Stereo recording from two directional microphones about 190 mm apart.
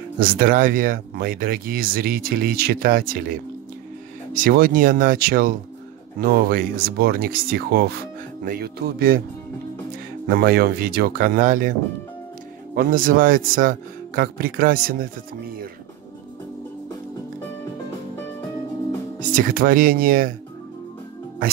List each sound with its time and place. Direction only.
0.2 s speech: 50° right (ahead or behind)
10.2 s speech: 55° right (ahead or behind)
12.7 s speech: 45° right (ahead or behind)
19.3 s speech: 50° right (ahead or behind)